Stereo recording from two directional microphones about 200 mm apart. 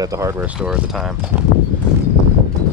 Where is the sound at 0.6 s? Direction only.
Centre (ahead or behind).